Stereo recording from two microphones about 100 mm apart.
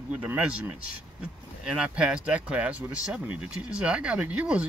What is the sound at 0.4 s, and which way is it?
Speech, 10° right (ahead or behind).